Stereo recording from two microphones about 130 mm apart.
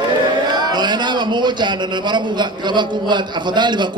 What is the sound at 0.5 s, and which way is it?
A man's voice, 35° right (ahead or behind).